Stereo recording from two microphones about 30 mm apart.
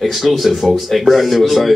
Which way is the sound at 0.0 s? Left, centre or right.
Centre.